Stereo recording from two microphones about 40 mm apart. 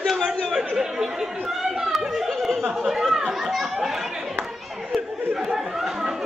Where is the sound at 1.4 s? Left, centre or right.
Centre.